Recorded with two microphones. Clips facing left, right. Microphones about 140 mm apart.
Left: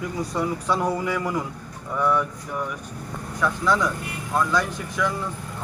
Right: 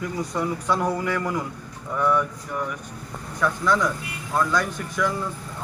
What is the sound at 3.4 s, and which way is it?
Speech, 5° left (ahead or behind).